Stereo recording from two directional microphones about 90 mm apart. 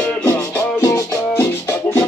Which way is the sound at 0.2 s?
25° left (ahead or behind).